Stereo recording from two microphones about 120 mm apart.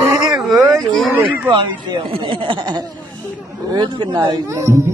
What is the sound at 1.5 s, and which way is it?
Speech, 45° right (ahead or behind).